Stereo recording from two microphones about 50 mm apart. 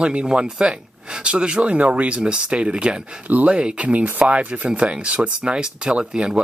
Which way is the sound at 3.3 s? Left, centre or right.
Right.